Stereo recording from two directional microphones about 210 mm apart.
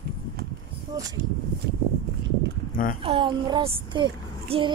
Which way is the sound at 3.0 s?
25° right (ahead or behind).